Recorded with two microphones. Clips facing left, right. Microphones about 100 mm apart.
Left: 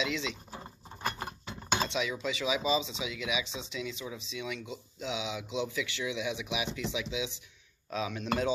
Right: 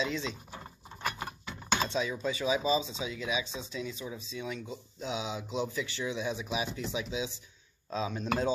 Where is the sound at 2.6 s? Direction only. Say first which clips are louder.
Right 1 dB; 20° left (ahead or behind).